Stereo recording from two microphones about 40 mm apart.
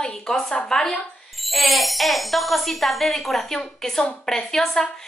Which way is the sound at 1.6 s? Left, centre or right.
Centre.